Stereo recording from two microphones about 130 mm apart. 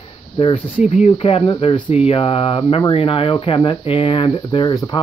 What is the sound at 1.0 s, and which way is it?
Speech, 50° left (ahead or behind).